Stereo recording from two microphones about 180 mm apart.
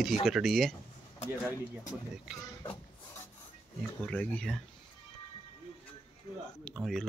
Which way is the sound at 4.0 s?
10° left (ahead or behind).